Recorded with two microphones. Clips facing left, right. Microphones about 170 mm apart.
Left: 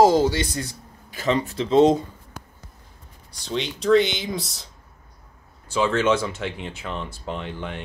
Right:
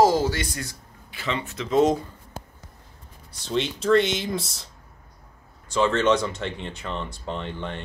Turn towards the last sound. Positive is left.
turn(degrees=5)  # may be behind; listen again after turning